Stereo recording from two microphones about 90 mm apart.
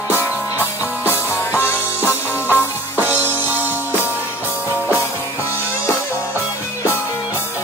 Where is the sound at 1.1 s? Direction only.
25° left (ahead or behind).